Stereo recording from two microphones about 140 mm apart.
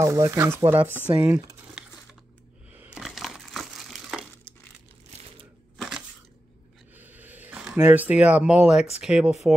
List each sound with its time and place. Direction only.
0.0 s speech: 20° right (ahead or behind)
2.7 s a sound: 10° right (ahead or behind)
3.0 s crumpling: centre (ahead or behind)
5.8 s crushing: centre (ahead or behind)
7.0 s a sound: 10° right (ahead or behind)
9.0 s speech: 5° right (ahead or behind)